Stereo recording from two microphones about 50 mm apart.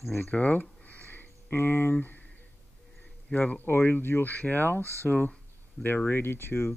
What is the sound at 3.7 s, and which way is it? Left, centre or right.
Speech, left.